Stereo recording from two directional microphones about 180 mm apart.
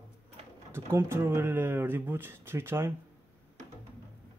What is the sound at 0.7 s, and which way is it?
Speech, 15° right (ahead or behind).